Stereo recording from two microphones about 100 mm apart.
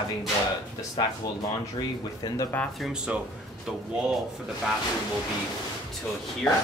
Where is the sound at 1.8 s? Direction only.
35° left (ahead or behind).